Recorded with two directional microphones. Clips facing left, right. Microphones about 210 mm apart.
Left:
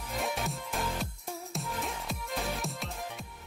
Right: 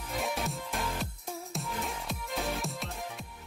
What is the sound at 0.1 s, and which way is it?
Music, centre (ahead or behind).